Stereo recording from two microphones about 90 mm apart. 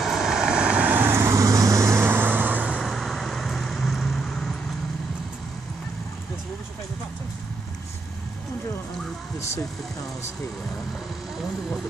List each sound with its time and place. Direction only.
0.0 s vehicle: 5° right (ahead or behind)
1.1 s vehicle: 35° right (ahead or behind); by 2.8 s 15° right (ahead or behind)
2.8 s vehicle: centre (ahead or behind)